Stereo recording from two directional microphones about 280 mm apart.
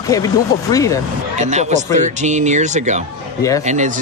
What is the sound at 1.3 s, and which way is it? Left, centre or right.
Speech, right.